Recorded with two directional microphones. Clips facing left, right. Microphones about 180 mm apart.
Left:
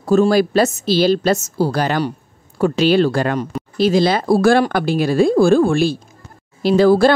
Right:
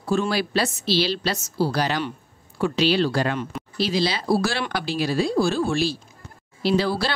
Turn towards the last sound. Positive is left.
turn(degrees=50)  # may be behind; listen again after turning